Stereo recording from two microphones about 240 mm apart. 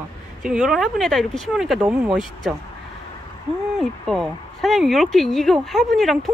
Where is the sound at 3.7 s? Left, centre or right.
Centre.